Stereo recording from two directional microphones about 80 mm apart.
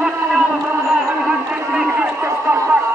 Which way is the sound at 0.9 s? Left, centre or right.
Centre.